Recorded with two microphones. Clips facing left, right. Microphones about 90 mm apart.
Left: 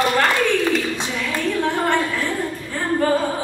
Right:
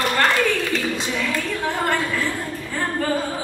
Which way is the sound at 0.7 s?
5° left (ahead or behind).